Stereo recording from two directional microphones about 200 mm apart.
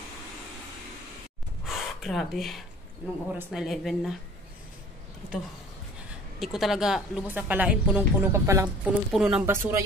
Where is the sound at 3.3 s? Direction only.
5° right (ahead or behind).